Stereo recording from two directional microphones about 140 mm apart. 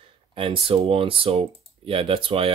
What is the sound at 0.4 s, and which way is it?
Speech, 40° right (ahead or behind).